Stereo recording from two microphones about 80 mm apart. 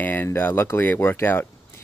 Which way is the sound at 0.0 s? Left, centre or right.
Left.